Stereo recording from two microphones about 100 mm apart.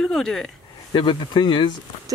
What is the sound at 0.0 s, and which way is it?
Speech, 5° left (ahead or behind).